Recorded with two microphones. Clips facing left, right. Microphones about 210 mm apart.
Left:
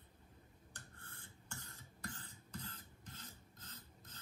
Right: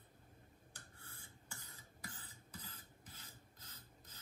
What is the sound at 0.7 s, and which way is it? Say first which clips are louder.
Cough: left 3 dB; 10° right (ahead or behind).